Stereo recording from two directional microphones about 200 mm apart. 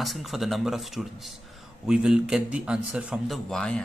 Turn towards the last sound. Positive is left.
turn(degrees=5)  # may be behind; listen again after turning